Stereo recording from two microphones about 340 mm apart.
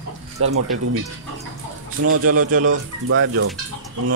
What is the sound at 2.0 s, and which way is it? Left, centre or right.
Speech, right.